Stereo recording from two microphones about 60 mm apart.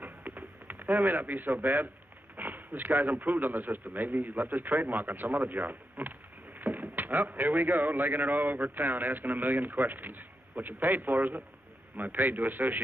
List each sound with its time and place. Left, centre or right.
0.0 s radio: right
2.3 s speech: right